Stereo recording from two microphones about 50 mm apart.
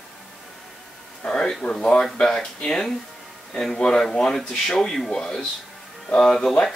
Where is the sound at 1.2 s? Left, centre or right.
Centre.